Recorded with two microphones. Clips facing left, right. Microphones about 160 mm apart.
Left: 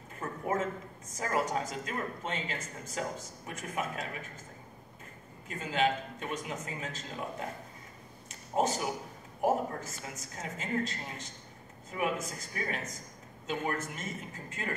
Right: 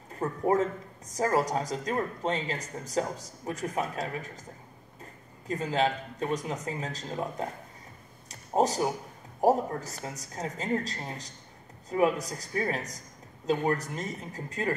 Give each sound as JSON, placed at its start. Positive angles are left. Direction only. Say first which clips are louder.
{"t": 0.1, "sound": "speech", "louder": "right 7 dB", "side_deg": -35}
{"t": 5.5, "sound": "speech", "louder": "right 3 dB", "side_deg": -35}
{"t": 8.3, "sound": "a sound", "louder": "right 4 dB", "side_deg": -35}
{"t": 9.4, "sound": "speech", "louder": "right 5 dB", "side_deg": -35}